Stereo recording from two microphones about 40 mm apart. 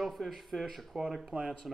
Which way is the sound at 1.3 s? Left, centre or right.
Right.